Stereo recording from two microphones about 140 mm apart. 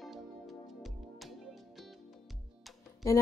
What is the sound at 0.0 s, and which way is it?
Music, centre (ahead or behind).